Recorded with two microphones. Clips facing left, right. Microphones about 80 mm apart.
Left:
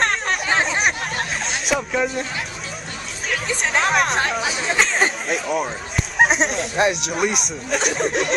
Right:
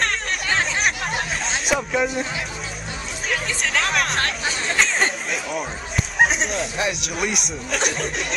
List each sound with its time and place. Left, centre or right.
0.5 s a sound: centre
0.7 s chatter: centre
3.6 s speech: centre